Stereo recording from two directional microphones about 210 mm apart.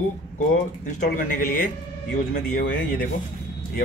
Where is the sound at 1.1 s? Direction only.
40° left (ahead or behind).